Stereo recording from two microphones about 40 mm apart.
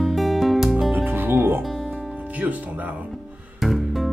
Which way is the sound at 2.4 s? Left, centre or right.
Right.